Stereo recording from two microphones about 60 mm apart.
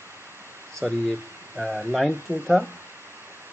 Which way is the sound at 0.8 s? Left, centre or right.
Centre.